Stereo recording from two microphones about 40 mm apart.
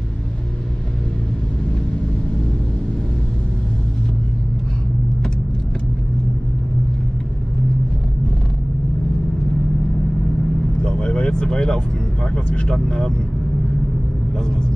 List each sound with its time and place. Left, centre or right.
10.8 s vehicle: left
12.4 s speech: left